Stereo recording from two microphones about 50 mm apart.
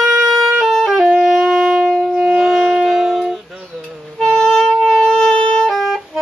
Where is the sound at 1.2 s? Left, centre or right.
Centre.